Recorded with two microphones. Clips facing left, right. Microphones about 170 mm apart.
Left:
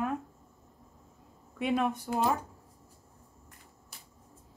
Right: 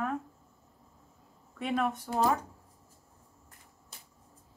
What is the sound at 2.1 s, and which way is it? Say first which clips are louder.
Speech: even; 15° left (ahead or behind).